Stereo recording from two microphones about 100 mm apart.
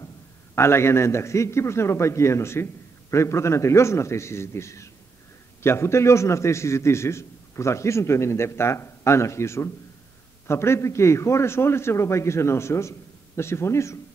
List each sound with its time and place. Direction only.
0.6 s a man's voice: 25° left (ahead or behind)